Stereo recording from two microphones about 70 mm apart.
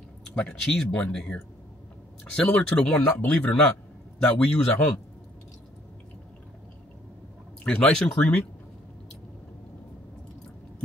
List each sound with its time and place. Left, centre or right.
0.3 s a man's voice: centre
7.6 s speech: centre